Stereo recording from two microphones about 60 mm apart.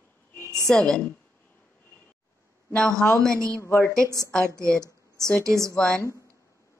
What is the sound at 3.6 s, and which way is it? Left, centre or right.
Speech, left.